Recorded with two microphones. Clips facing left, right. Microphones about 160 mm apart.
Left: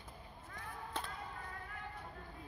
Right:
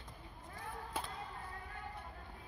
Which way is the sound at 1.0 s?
10° right (ahead or behind).